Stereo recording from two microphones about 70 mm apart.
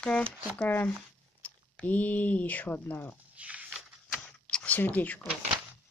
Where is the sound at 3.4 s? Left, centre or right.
Right.